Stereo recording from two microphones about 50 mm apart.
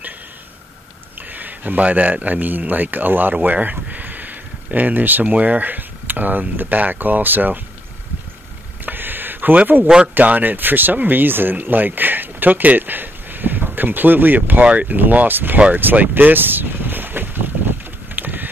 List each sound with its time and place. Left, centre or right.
1.3 s speech: right
3.4 s a sound: right
5.2 s speech: right
8.8 s a sound: right
10.1 s speech: right
15.7 s boat: right